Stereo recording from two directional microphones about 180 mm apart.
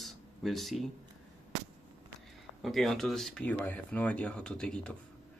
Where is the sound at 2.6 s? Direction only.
Centre (ahead or behind).